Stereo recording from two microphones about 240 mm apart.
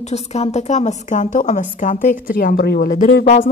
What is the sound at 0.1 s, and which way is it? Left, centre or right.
A woman's voice, left.